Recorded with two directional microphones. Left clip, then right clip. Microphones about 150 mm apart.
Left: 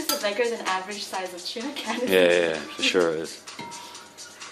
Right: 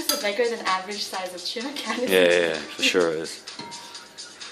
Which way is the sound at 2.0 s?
5° left (ahead or behind).